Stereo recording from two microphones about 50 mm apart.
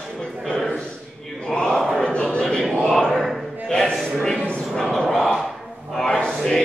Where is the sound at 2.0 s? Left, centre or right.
Centre.